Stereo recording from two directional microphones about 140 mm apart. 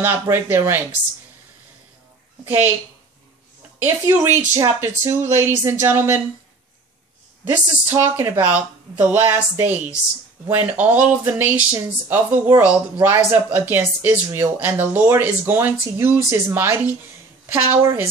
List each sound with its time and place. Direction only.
0.0 s speech: 15° right (ahead or behind)
3.8 s speech: 15° right (ahead or behind)
7.4 s speech: 15° right (ahead or behind)